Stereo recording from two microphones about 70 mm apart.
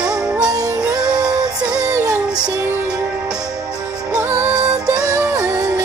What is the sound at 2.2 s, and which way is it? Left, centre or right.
Music, centre.